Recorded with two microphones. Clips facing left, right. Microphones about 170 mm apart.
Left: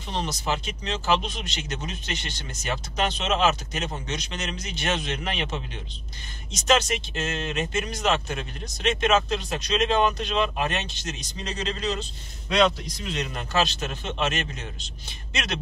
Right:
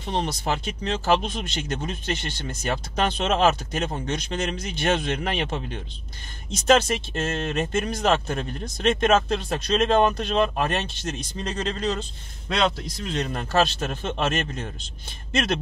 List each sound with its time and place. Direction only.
0.0 s speech: 55° right (ahead or behind)
13.1 s speech: 50° right (ahead or behind)